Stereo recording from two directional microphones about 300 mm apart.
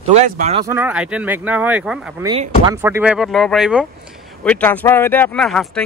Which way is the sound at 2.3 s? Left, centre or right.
Centre.